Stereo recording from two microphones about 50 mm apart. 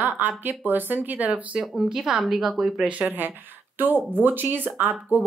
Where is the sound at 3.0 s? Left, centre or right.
Right.